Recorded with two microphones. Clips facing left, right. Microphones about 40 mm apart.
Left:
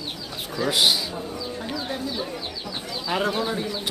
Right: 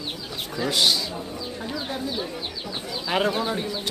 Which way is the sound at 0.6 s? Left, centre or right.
Centre.